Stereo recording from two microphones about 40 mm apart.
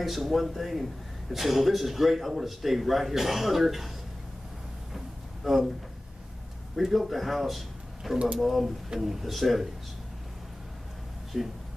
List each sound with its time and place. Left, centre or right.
0.0 s speech: centre
4.9 s a sound: centre
6.8 s a man's voice: centre
11.3 s speech: centre